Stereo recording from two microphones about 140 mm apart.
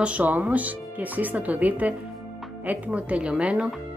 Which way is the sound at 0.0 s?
10° right (ahead or behind).